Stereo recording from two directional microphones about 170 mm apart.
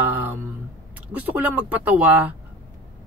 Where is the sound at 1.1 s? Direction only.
15° right (ahead or behind).